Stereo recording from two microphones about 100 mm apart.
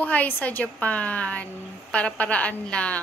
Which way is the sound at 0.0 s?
15° left (ahead or behind).